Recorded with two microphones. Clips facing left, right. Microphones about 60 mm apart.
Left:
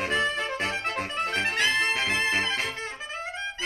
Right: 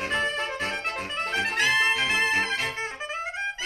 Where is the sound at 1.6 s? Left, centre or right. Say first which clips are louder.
Right 3 dB; right.